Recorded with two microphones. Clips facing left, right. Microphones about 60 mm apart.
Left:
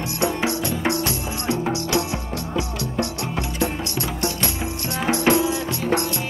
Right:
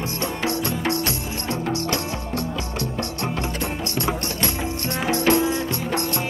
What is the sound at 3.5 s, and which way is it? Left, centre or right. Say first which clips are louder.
Music: left 2 dB; right.